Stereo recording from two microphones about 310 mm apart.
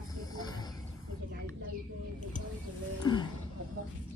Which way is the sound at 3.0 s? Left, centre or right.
Centre.